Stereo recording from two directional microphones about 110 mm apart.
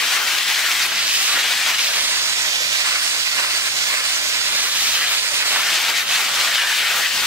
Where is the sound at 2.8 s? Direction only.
25° right (ahead or behind).